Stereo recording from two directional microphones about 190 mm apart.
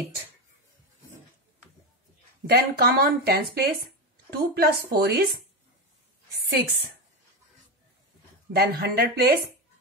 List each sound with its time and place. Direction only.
2.4 s speech: 55° right (ahead or behind)
8.5 s speech: 60° right (ahead or behind)